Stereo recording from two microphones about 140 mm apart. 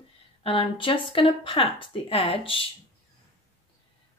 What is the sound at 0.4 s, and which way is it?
A woman's voice, 40° left (ahead or behind).